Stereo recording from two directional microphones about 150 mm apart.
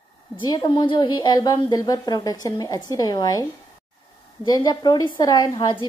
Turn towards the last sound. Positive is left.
turn(degrees=25)  # may be behind; listen again after turning